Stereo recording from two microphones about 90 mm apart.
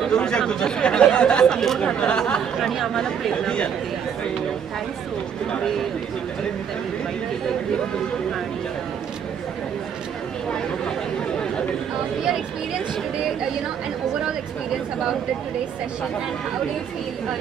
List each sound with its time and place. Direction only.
0.0 s speech: 10° left (ahead or behind)
5.5 s speech: 5° left (ahead or behind)